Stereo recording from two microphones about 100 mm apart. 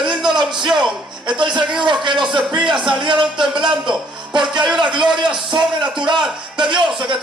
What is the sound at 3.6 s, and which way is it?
Speech, 50° right (ahead or behind).